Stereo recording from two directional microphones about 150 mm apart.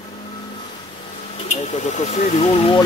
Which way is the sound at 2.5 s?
35° left (ahead or behind).